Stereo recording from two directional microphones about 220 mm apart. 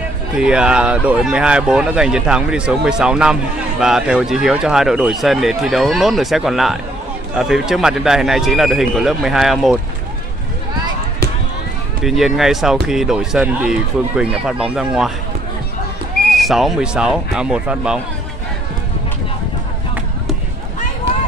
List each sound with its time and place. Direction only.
0.4 s speech: 5° right (ahead or behind)
12.0 s speech: centre (ahead or behind)
16.3 s speech: centre (ahead or behind)